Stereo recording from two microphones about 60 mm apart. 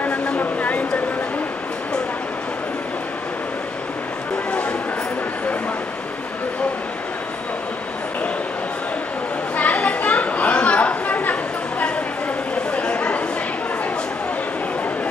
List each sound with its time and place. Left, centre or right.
0.0 s a sound: left
4.5 s music: left
9.6 s chatter: left
12.7 s chatter: centre